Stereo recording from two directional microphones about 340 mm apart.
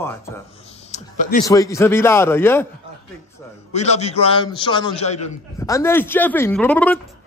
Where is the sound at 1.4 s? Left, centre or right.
Centre.